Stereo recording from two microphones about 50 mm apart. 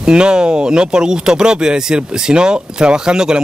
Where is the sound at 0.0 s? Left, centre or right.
Centre.